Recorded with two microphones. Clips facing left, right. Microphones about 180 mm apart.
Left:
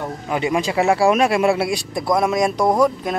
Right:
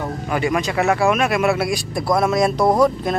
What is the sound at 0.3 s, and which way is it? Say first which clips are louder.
Speech: left 1 dB; 25° left (ahead or behind).